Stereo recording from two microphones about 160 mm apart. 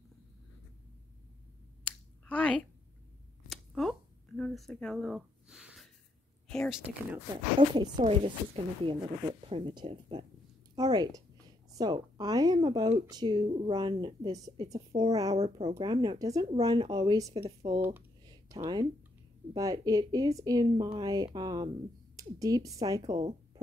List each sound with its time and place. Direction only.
1.9 s a sound: 10° left (ahead or behind)
4.4 s speech: centre (ahead or behind)
7.7 s speech: 25° right (ahead or behind)
8.0 s speech: 35° right (ahead or behind)
18.2 s a sound: 25° right (ahead or behind)
19.5 s speech: 20° right (ahead or behind)
20.6 s speech: 35° right (ahead or behind)
23.1 s speech: 40° right (ahead or behind)